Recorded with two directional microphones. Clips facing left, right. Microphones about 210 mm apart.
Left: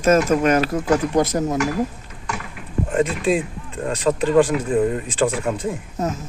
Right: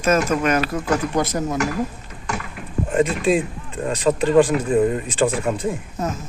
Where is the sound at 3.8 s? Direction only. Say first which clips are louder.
Right 1 dB; 15° right (ahead or behind).